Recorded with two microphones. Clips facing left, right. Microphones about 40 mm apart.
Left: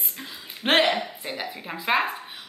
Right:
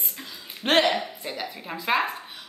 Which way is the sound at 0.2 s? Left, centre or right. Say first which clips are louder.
Left 2 dB; centre.